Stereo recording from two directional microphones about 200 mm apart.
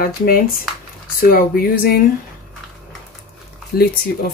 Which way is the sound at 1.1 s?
45° left (ahead or behind).